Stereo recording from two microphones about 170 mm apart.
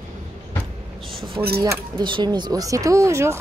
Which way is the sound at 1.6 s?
25° right (ahead or behind).